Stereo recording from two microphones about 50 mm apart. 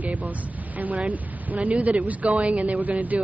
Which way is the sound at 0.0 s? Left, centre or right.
Right.